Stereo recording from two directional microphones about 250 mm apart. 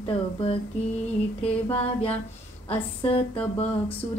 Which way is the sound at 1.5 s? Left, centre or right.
Left.